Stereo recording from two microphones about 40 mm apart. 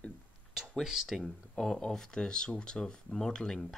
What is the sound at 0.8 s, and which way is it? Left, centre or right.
Speech, centre.